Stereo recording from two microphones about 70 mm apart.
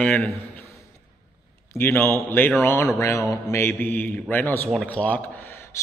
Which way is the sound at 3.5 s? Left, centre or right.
Left.